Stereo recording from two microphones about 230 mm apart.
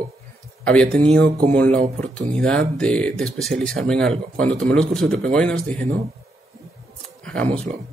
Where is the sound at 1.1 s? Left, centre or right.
Right.